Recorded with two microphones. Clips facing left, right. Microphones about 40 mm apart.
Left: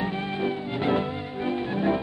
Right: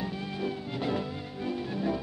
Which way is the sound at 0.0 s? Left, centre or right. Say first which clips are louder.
Left 6 dB; left.